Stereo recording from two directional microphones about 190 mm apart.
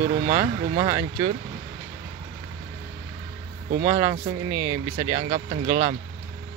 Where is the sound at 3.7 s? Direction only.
20° right (ahead or behind).